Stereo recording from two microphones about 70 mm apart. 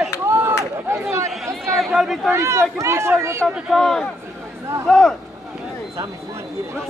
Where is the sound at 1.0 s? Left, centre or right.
Right.